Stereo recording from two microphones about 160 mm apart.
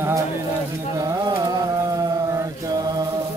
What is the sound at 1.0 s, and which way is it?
Carnatic music, 20° right (ahead or behind).